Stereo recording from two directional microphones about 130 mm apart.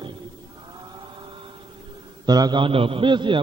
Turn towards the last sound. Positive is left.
turn(degrees=-40)  # may be behind; listen again after turning